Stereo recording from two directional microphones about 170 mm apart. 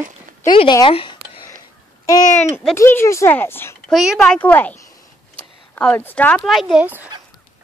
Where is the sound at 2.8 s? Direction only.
15° left (ahead or behind).